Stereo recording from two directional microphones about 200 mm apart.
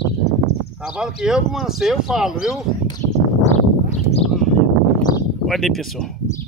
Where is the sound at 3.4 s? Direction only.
35° left (ahead or behind).